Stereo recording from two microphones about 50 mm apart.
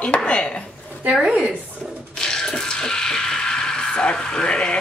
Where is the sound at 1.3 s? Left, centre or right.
Centre.